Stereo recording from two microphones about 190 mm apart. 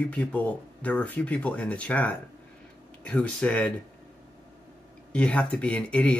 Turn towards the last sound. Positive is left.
turn(degrees=5)  # may be behind; listen again after turning